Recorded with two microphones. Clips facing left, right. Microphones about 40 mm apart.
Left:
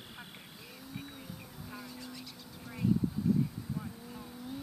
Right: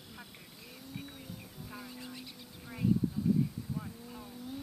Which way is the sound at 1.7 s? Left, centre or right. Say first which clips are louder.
Even; centre.